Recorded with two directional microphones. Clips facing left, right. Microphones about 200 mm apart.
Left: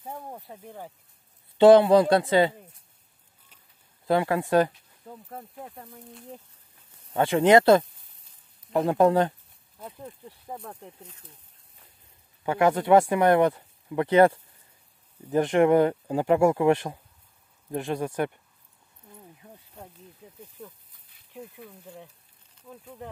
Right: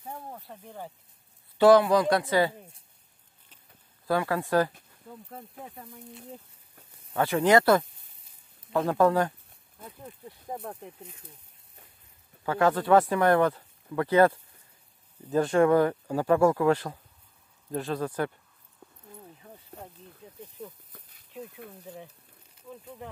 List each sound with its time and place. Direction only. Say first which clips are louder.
0.4 s speech: left 1 dB; 5° left (ahead or behind)
1.6 s speech: left 4 dB; 25° left (ahead or behind)
4.1 s speech: left 3 dB; 20° left (ahead or behind)
7.2 s speech: left 3 dB; 25° left (ahead or behind)
10.5 s speech: right 2 dB; 10° right (ahead or behind)
12.4 s speech: left 2 dB; 20° left (ahead or behind)